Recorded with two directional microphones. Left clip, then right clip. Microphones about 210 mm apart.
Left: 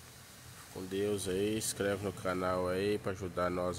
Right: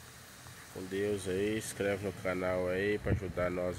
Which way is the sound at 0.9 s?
15° left (ahead or behind).